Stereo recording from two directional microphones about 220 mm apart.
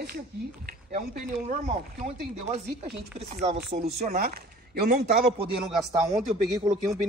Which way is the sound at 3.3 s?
30° right (ahead or behind).